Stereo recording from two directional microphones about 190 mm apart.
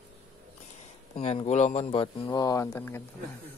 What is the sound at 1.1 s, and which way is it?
Speech, 35° left (ahead or behind).